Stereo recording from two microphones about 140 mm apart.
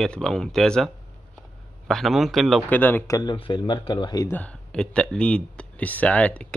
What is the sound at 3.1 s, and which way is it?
Speech, 35° left (ahead or behind).